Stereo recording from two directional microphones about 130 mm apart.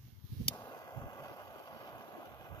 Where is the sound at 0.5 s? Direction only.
30° left (ahead or behind).